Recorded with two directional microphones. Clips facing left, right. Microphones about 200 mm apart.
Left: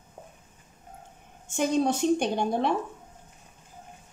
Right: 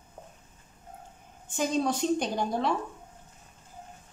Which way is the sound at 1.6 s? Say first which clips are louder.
Left 3 dB; 60° left (ahead or behind).